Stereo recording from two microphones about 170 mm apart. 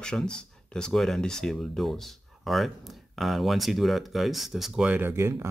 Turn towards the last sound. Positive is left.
turn(degrees=-15)  # may be behind; listen again after turning